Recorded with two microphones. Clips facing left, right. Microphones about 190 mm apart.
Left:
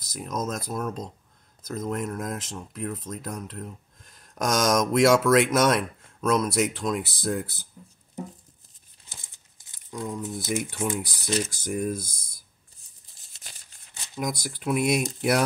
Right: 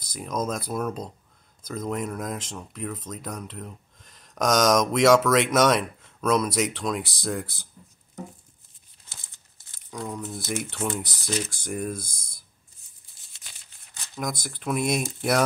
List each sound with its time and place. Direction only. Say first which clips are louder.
0.0 s speech: right 2 dB; centre (ahead or behind)
9.1 s tearing: left 2 dB; 20° left (ahead or behind)
9.9 s speech: left 1 dB; 15° left (ahead or behind)
12.0 s speech: left 1 dB; 50° right (ahead or behind)
14.3 s speech: left 2 dB; 50° right (ahead or behind)
14.6 s speech: left 2 dB; 5° left (ahead or behind)